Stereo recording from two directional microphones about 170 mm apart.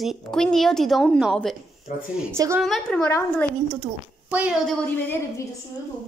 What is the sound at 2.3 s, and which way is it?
Speech, 15° right (ahead or behind).